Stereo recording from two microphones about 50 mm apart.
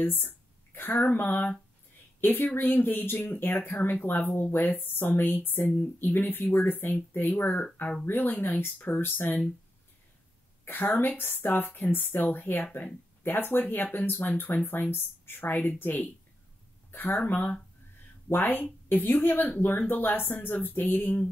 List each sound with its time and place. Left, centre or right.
0.0 s a woman's voice: left
10.9 s speech: left